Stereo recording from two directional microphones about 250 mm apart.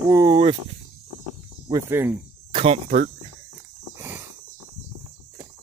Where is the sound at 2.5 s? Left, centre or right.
Right.